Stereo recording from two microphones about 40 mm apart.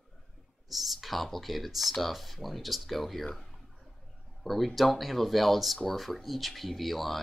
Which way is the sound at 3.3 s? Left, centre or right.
Centre.